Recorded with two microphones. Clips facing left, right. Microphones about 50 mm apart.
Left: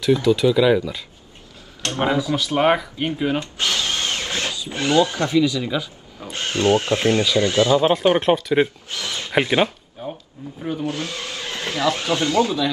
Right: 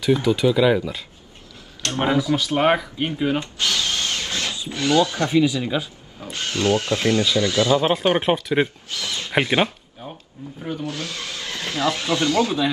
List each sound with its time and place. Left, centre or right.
0.0 s speech: centre
2.0 s speech: right
2.3 s speech: centre
3.5 s drill: left
4.6 s speech: left
5.3 s speech: right
6.3 s speech: left
7.8 s speech: centre
8.9 s speech: left
9.4 s speech: centre
10.8 s speech: left
12.4 s speech: right